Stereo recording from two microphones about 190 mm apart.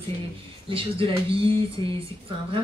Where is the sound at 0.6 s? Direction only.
30° right (ahead or behind).